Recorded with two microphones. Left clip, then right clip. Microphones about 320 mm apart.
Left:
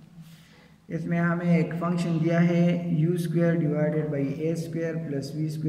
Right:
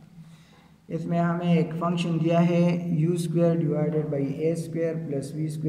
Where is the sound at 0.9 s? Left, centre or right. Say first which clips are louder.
Right 1 dB; centre.